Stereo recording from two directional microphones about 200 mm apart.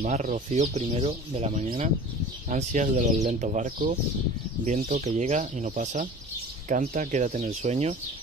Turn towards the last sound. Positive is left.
turn(degrees=-35)  # may be behind; listen again after turning